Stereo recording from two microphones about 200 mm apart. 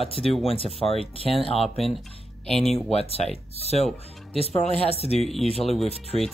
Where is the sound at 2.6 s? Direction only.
30° left (ahead or behind).